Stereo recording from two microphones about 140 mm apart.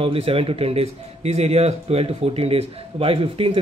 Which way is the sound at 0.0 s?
45° right (ahead or behind).